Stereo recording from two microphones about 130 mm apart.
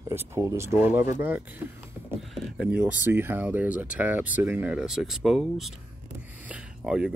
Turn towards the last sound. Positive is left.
turn(degrees=-5)  # may be behind; listen again after turning